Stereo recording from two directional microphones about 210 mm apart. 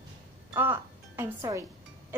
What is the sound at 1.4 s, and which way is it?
Speech, 15° right (ahead or behind).